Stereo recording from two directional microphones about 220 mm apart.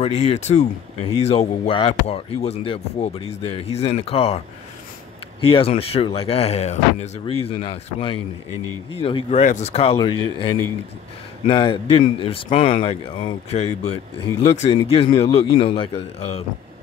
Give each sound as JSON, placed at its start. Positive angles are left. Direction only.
{"t": 0.0, "sound": "speech", "side_deg": 30}
{"t": 5.4, "sound": "speech", "side_deg": 25}
{"t": 11.4, "sound": "speech", "side_deg": 20}